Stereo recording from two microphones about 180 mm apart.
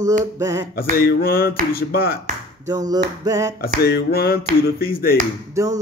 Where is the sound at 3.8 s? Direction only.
60° left (ahead or behind).